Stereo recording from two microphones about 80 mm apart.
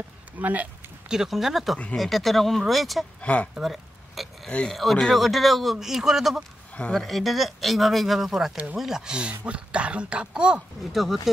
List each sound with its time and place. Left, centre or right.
0.4 s speech: right
1.0 s speech: centre
3.2 s speech: centre
3.5 s a sound: centre
4.5 s speech: centre
4.7 s speech: centre
6.7 s a sound: centre
7.0 s speech: centre
10.9 s speech: centre